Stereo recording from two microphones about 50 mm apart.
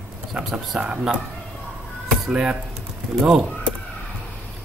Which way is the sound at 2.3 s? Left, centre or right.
Centre.